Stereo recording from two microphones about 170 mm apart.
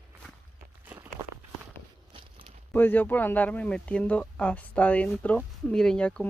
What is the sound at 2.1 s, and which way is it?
Crumpling, 35° right (ahead or behind).